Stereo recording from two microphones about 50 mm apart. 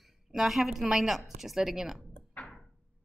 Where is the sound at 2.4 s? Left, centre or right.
Left.